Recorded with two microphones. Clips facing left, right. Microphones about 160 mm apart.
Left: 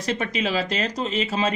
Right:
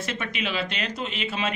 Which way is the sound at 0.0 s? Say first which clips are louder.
Left 5 dB; 35° left (ahead or behind).